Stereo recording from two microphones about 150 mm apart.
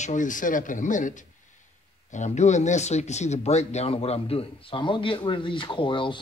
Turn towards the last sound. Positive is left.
turn(degrees=35)  # may be behind; listen again after turning